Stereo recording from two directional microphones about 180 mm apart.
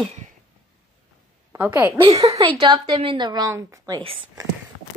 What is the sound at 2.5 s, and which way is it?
A woman's voice, 25° right (ahead or behind).